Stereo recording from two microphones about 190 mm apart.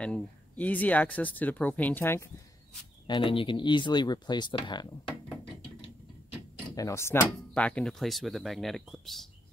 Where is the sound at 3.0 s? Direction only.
25° left (ahead or behind).